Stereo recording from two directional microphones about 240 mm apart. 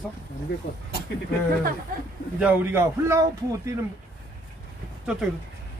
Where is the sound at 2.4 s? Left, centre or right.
Centre.